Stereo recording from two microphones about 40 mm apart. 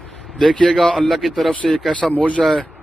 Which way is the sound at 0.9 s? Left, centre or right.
Centre.